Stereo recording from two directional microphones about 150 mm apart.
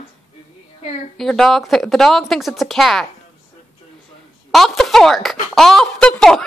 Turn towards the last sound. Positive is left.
turn(degrees=5)  # may be behind; listen again after turning